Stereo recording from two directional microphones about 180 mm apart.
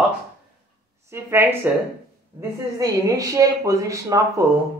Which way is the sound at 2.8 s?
20° right (ahead or behind).